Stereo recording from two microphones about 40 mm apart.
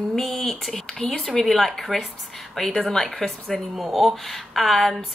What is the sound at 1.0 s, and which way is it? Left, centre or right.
Speech, left.